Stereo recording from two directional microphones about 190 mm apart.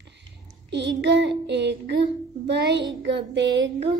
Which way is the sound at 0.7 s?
65° right (ahead or behind).